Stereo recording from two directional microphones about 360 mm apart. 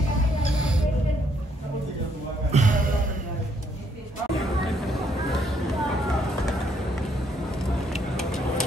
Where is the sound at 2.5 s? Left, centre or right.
Right.